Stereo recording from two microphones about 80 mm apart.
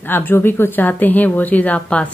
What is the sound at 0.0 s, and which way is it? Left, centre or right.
Speech, left.